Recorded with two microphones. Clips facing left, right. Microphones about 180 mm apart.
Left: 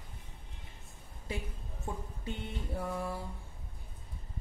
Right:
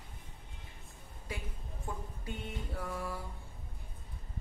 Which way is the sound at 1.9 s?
25° left (ahead or behind).